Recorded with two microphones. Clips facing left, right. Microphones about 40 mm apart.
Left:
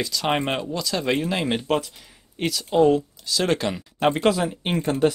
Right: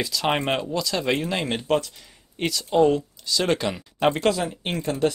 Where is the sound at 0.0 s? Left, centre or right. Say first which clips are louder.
Even; centre.